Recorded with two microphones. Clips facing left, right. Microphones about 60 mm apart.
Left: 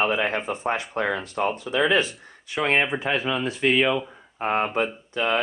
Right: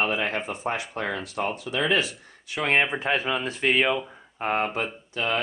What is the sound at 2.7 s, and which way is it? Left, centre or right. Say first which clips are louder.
Speech: right 1 dB; centre.